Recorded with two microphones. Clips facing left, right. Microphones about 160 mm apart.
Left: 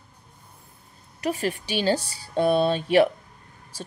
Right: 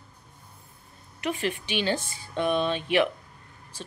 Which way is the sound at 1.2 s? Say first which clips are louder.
Left 3 dB; 40° left (ahead or behind).